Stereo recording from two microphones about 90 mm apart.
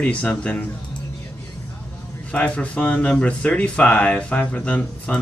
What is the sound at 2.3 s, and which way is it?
Speech, 15° left (ahead or behind).